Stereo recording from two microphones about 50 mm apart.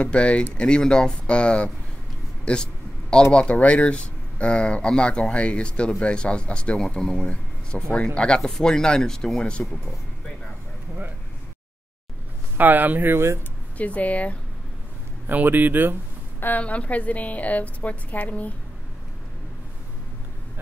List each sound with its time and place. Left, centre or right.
0.0 s speech: left
7.2 s speech: left
8.4 s speech: centre
12.5 s speech: right
13.7 s speech: left
15.2 s speech: right
16.3 s a woman's voice: left
16.6 s speech: left